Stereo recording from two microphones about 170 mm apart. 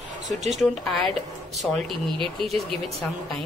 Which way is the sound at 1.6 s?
Centre (ahead or behind).